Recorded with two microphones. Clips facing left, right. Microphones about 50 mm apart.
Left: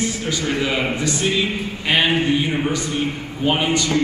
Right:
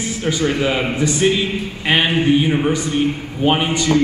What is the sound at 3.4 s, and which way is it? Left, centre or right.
Speech, right.